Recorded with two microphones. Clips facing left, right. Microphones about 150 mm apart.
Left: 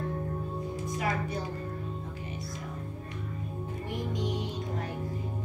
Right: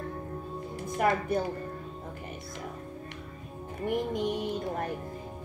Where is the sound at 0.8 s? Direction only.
55° right (ahead or behind).